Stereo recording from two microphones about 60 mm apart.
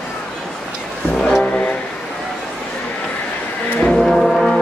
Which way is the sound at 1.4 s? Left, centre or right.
Centre.